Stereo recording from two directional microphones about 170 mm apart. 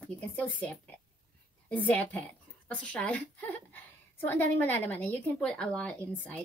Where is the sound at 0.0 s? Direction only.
10° left (ahead or behind).